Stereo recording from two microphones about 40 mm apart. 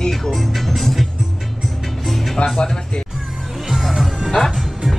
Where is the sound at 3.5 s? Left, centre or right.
Centre.